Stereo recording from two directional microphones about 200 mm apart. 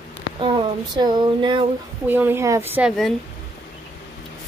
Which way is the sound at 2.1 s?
10° right (ahead or behind).